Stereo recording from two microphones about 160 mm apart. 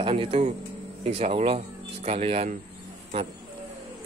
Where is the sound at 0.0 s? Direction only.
35° right (ahead or behind).